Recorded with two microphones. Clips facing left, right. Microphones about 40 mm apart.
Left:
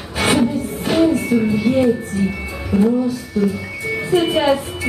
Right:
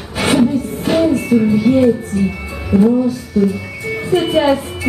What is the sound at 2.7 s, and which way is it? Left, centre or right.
Speech, centre.